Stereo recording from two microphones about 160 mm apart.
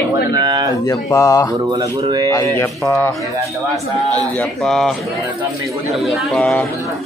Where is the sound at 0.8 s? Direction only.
20° left (ahead or behind).